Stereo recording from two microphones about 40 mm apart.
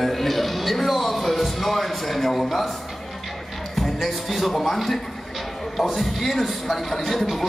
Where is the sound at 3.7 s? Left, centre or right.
Centre.